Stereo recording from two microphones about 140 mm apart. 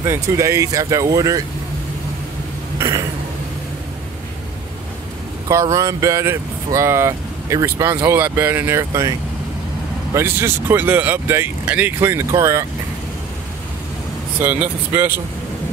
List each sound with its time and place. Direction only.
0.0 s speech: 20° right (ahead or behind)
2.8 s a sound: 25° right (ahead or behind)
5.5 s speech: 20° right (ahead or behind)
10.1 s speech: 15° right (ahead or behind)
14.4 s speech: 15° right (ahead or behind)